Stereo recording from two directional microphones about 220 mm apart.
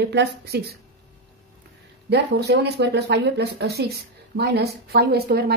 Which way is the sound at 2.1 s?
50° right (ahead or behind).